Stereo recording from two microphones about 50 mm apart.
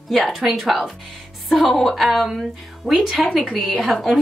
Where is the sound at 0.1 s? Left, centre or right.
Centre.